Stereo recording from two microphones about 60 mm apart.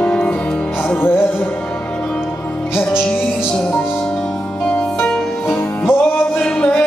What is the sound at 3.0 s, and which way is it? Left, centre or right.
Music, centre.